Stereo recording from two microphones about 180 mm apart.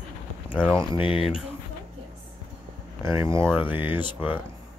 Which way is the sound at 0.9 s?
30° left (ahead or behind).